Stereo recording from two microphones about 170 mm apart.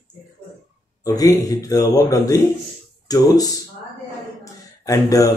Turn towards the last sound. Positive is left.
turn(degrees=20)  # may be behind; listen again after turning